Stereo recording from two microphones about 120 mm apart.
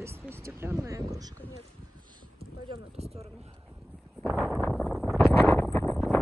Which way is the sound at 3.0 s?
60° right (ahead or behind).